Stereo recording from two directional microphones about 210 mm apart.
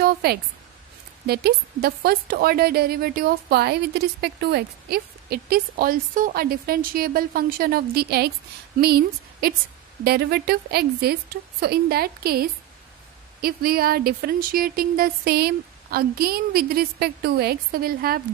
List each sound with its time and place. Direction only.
0.0 s speech: 50° right (ahead or behind)